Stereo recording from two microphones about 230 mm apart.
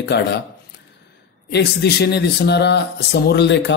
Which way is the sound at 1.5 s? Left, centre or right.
Left.